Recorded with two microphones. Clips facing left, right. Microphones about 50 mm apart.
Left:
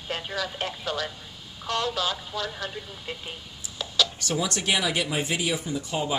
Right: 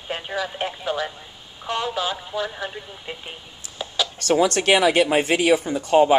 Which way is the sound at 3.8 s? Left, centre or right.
Centre.